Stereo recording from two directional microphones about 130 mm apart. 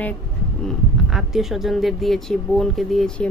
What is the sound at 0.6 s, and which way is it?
Speech, 5° right (ahead or behind).